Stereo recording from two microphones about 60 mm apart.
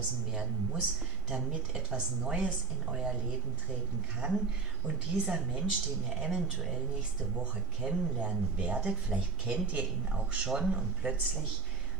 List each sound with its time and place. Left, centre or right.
0.3 s speech: centre
4.2 s speech: centre
7.8 s speech: centre